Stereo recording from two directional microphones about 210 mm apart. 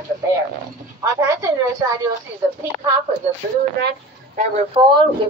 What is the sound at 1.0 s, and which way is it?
A woman's voice, 15° right (ahead or behind).